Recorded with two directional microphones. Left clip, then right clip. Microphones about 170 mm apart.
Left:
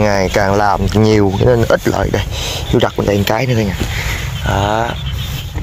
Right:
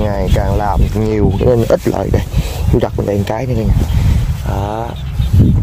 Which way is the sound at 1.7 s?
25° right (ahead or behind).